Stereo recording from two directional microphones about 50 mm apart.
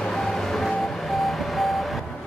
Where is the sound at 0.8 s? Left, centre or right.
Centre.